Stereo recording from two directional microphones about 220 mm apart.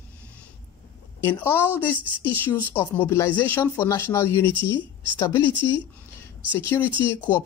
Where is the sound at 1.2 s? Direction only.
10° left (ahead or behind).